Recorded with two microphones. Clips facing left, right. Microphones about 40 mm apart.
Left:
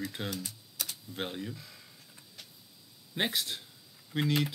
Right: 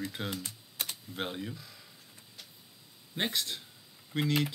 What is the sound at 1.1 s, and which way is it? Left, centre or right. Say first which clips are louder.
Speech: even; centre.